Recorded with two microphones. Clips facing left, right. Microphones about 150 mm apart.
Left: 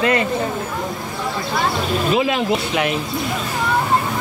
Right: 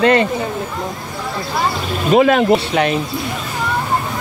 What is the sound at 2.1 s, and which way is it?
Speech, 50° right (ahead or behind).